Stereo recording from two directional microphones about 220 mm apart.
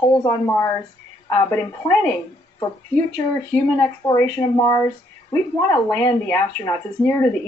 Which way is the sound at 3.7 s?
15° left (ahead or behind).